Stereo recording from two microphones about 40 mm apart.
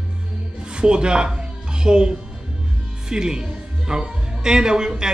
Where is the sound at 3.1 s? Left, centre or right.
Centre.